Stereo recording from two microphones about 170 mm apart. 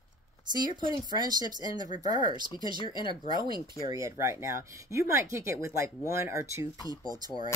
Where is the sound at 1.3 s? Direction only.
25° right (ahead or behind).